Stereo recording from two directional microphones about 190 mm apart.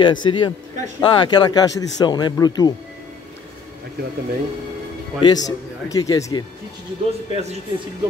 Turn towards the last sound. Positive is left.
turn(degrees=-35)  # may be behind; listen again after turning